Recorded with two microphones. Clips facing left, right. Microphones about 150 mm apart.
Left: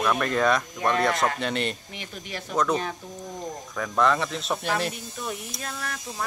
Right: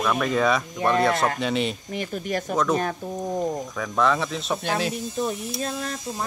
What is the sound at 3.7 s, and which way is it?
Speech, centre (ahead or behind).